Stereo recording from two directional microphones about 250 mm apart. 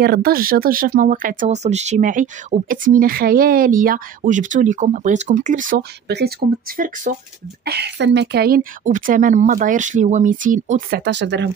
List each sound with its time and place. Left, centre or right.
0.0 s speech: right